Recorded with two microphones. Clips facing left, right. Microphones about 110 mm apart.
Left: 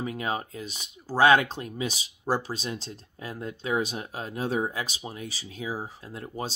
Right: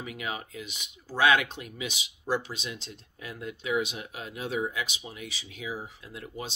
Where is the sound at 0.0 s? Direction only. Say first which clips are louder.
Left 6 dB; 35° left (ahead or behind).